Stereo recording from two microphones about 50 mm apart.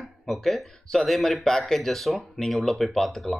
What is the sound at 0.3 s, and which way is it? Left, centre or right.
Speech, centre.